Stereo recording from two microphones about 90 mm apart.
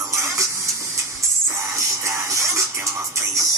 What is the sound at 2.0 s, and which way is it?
Music, 35° right (ahead or behind).